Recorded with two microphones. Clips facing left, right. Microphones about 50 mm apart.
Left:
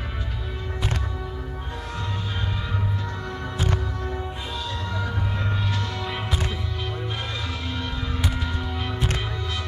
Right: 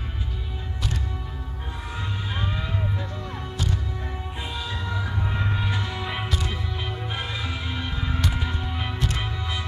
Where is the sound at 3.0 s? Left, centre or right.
Left.